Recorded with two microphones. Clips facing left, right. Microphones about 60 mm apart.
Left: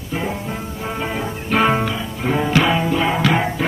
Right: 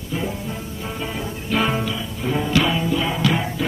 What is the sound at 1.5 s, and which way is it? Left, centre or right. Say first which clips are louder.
Music: left 5 dB; left.